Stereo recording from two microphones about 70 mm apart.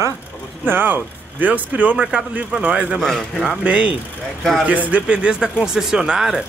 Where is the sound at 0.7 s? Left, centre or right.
Right.